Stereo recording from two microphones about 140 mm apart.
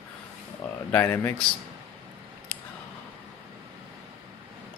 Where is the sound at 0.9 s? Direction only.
15° left (ahead or behind).